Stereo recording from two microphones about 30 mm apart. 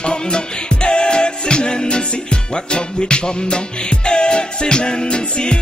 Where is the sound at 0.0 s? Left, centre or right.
Left.